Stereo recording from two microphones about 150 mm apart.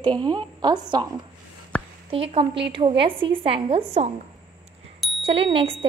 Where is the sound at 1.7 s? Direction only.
5° left (ahead or behind).